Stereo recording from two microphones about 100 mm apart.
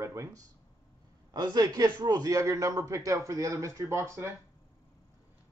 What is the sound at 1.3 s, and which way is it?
A man's voice, 40° right (ahead or behind).